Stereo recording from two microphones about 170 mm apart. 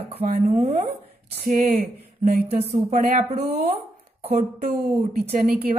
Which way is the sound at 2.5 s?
35° right (ahead or behind).